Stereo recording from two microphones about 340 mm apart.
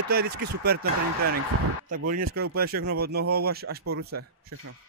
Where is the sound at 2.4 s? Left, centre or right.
Right.